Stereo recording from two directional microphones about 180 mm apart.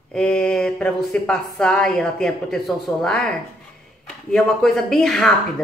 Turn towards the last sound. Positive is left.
turn(degrees=0)  # may be behind; listen again after turning